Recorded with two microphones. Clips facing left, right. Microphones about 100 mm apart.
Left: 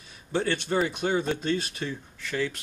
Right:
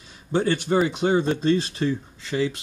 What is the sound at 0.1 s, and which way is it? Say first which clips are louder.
Speech: right 5 dB; 25° right (ahead or behind).